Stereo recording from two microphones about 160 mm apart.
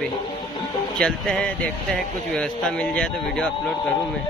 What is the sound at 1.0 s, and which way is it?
Speech, 5° left (ahead or behind).